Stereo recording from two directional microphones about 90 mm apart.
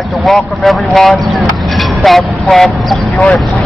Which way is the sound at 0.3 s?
5° left (ahead or behind).